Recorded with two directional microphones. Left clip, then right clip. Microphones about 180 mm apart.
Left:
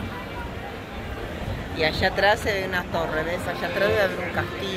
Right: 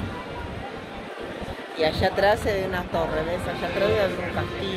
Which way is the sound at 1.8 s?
35° right (ahead or behind).